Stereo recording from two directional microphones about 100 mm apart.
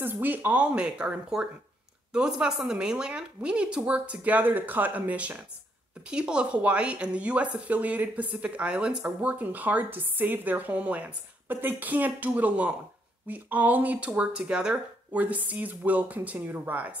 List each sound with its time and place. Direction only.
0.0 s a woman's voice: 20° right (ahead or behind)